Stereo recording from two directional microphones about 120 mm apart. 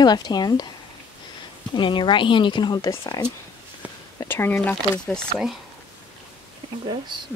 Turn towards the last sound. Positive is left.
turn(degrees=-40)  # may be behind; listen again after turning